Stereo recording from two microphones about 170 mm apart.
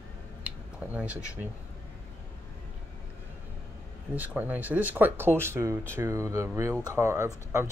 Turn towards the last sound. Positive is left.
turn(degrees=-15)  # may be behind; listen again after turning